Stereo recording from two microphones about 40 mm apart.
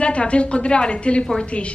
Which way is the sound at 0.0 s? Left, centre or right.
Left.